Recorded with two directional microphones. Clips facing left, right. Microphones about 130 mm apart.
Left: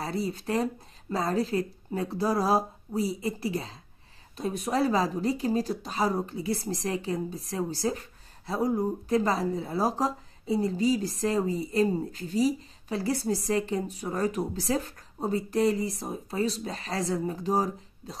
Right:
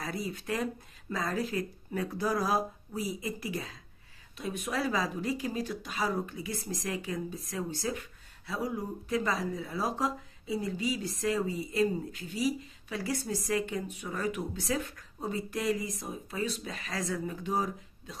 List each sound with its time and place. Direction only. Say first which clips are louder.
0.0 s speech: left 5 dB; 30° left (ahead or behind)